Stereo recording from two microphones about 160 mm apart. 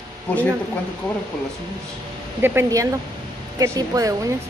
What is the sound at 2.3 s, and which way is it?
A woman's voice, 15° right (ahead or behind).